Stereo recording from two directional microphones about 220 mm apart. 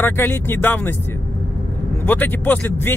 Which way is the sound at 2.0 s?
5° left (ahead or behind).